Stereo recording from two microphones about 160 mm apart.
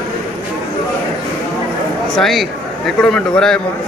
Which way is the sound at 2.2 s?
Centre (ahead or behind).